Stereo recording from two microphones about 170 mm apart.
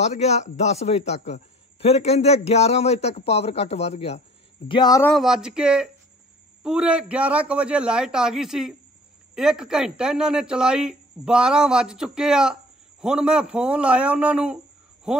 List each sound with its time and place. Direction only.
0.0 s a man's voice: 40° left (ahead or behind)
4.6 s speech: 25° left (ahead or behind)
5.0 s a man's voice: centre (ahead or behind)